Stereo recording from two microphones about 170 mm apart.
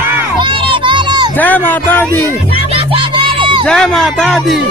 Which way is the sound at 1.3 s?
10° left (ahead or behind).